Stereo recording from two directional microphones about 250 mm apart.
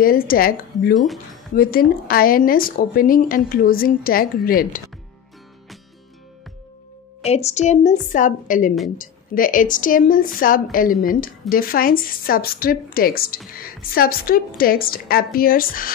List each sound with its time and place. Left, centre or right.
0.0 s speech: left
0.9 s speech: centre
1.5 s speech: left
7.2 s a woman's voice: left